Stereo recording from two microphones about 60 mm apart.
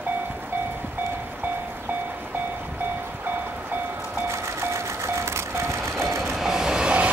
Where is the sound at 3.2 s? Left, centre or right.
Right.